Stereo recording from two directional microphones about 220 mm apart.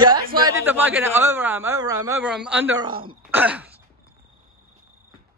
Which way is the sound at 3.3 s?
5° right (ahead or behind).